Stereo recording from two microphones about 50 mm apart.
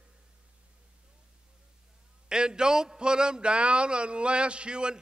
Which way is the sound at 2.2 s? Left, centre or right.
Centre.